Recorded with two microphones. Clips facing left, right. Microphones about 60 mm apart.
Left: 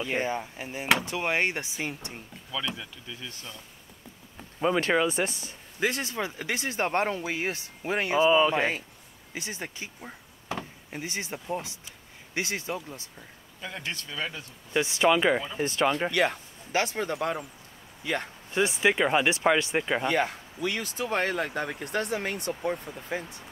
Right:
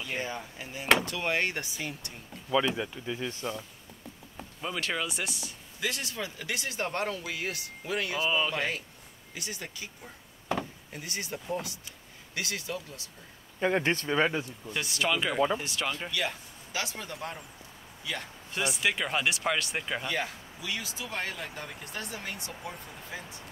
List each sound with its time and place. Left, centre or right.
0.0 s speech: left
2.7 s speech: right
4.6 s speech: left
13.6 s speech: right
14.7 s speech: left
15.6 s speech: left
18.8 s speech: left
20.1 s speech: left